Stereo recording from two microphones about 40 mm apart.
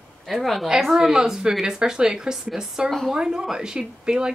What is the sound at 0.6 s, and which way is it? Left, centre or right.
A woman's voice, centre.